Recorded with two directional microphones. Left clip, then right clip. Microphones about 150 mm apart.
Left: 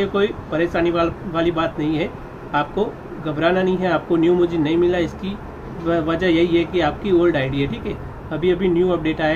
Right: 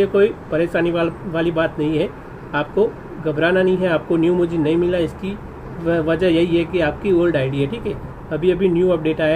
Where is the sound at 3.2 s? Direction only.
Centre (ahead or behind).